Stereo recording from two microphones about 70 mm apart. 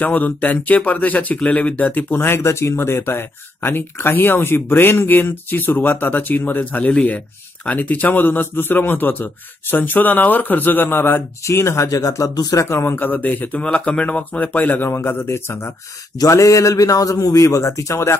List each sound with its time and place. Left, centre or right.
0.0 s speech: left
11.4 s a man's voice: left
12.6 s a man's voice: left
12.9 s speech: left
16.2 s a man's voice: left